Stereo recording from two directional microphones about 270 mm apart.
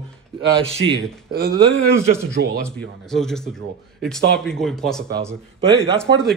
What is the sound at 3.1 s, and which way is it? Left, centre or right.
Speech, centre.